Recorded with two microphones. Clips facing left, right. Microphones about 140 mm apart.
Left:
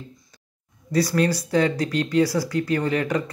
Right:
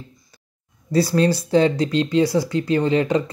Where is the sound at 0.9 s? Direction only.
30° right (ahead or behind).